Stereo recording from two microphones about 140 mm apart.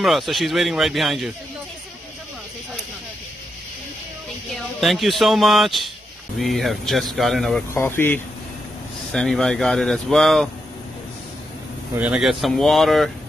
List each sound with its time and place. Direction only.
0.0 s speech: centre (ahead or behind)
4.6 s speech: centre (ahead or behind)
7.7 s speech: 15° left (ahead or behind)
9.1 s speech: 5° left (ahead or behind)
12.0 s speech: 5° right (ahead or behind)